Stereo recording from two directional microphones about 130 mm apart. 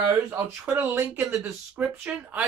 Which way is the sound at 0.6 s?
20° right (ahead or behind).